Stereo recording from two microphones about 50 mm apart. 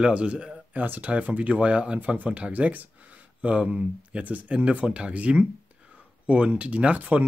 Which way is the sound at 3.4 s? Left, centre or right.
Centre.